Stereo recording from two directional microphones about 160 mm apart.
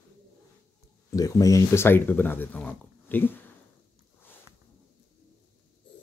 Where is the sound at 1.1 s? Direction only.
20° left (ahead or behind).